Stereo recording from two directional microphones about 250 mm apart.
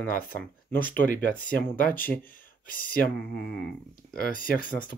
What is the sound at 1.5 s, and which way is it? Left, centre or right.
Speech, left.